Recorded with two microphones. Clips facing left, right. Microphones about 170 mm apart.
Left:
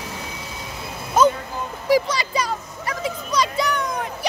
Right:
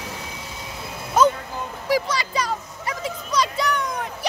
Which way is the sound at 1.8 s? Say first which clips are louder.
Left 4 dB; 15° left (ahead or behind).